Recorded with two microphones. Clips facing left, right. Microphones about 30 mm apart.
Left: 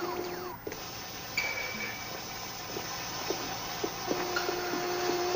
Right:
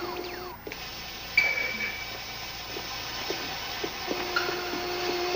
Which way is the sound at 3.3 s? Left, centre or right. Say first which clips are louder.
Right 1 dB; right.